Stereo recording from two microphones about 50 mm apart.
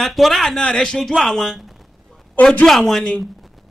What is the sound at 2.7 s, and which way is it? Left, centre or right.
Speech, centre.